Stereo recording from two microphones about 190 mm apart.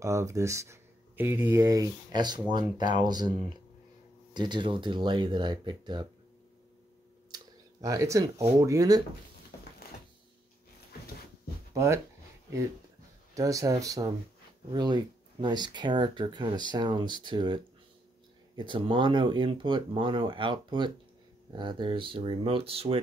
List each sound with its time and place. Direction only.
0.0 s speech: 15° right (ahead or behind)
7.2 s speech: 20° right (ahead or behind)
11.7 s speech: 15° right (ahead or behind)
13.3 s speech: 15° right (ahead or behind)
18.6 s speech: 25° right (ahead or behind)